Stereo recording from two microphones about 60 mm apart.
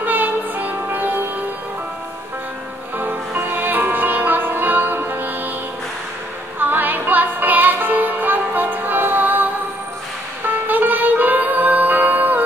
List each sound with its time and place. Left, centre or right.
0.0 s music: right
3.0 s music: right
6.6 s music: right
10.7 s music: right